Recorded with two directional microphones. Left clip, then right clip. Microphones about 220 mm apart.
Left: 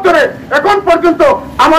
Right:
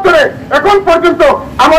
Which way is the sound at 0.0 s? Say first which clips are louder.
Right 1 dB; 45° left (ahead or behind).